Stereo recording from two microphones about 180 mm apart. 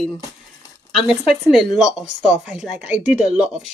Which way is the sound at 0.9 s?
5° right (ahead or behind).